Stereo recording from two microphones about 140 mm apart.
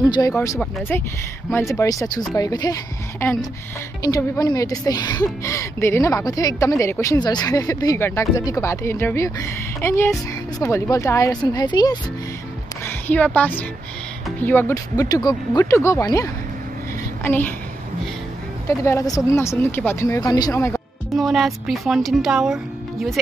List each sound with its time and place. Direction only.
0.2 s a woman's voice: 20° left (ahead or behind)
4.0 s a woman's voice: 25° left (ahead or behind)
12.8 s a woman's voice: 10° left (ahead or behind)
17.2 s a woman's voice: 15° left (ahead or behind)
18.7 s a woman's voice: 20° left (ahead or behind)
20.2 s a woman's voice: 30° left (ahead or behind)
21.1 s speech: centre (ahead or behind)